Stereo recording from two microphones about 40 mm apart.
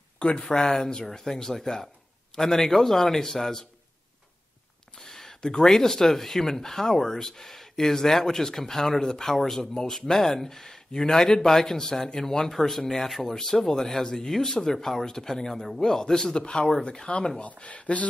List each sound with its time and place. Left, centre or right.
0.4 s speech: centre
4.9 s a sound: centre
5.4 s speech: centre
17.4 s speech: left